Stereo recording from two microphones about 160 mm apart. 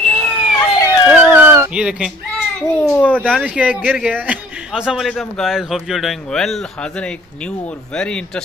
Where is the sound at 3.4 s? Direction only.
10° right (ahead or behind).